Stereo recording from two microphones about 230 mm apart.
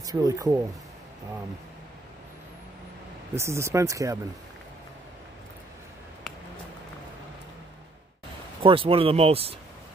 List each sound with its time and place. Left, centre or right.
0.0 s speech: centre
3.3 s speech: centre
8.6 s speech: right